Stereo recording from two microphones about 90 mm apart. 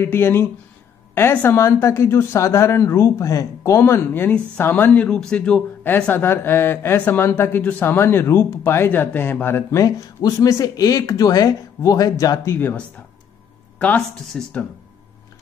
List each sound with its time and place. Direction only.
0.0 s a woman's voice: 25° left (ahead or behind); by 5.6 s 10° left (ahead or behind)
6.1 s a woman's voice: 25° left (ahead or behind)
9.8 s speech: 45° left (ahead or behind)
13.7 s speech: 15° left (ahead or behind)